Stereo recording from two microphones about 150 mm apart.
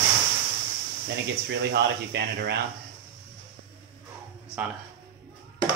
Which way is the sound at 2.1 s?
90° right.